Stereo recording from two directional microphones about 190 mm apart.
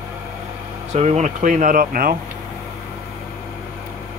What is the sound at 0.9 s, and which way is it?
Speech, 35° right (ahead or behind).